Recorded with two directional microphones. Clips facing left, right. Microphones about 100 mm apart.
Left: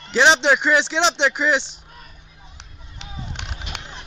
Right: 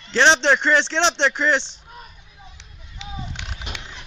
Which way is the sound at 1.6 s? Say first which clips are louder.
Right 3 dB; 30° right (ahead or behind).